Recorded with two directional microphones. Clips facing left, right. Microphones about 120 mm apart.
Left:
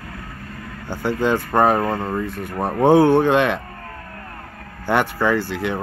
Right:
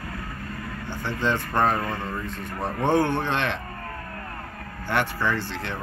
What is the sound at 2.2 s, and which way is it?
Speech, 10° left (ahead or behind).